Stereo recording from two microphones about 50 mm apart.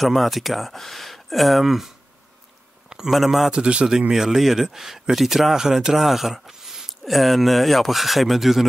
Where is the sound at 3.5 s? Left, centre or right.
Centre.